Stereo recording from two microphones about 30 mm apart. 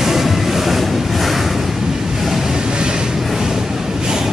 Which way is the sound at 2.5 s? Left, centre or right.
Right.